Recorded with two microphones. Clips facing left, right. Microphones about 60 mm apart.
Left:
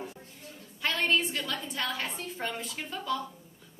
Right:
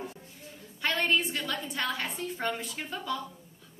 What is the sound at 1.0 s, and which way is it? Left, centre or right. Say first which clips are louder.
A woman's voice: left 2 dB; centre.